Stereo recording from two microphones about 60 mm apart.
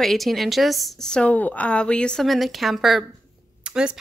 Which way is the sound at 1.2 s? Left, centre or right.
Left.